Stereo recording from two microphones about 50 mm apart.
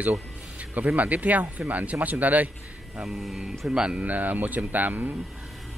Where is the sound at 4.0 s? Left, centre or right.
Right.